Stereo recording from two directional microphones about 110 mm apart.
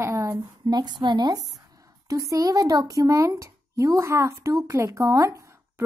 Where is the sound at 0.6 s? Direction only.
40° right (ahead or behind).